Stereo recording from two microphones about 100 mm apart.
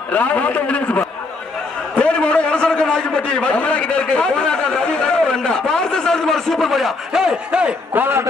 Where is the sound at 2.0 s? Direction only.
10° left (ahead or behind).